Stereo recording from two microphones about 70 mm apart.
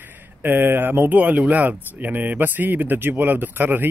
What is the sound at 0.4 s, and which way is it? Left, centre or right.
A man's voice, right.